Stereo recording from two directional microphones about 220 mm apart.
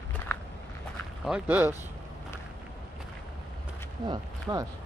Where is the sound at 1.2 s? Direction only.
5° right (ahead or behind).